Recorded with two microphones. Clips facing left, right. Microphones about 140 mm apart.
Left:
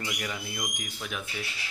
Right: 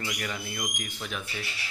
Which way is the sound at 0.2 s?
15° left (ahead or behind).